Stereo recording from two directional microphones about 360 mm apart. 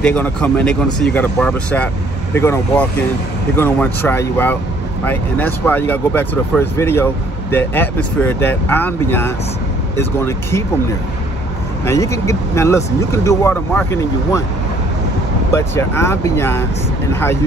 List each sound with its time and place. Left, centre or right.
0.0 s speech: centre
11.8 s speech: centre
15.5 s speech: centre